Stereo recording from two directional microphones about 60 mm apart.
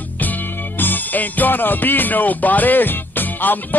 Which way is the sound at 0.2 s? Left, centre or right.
Left.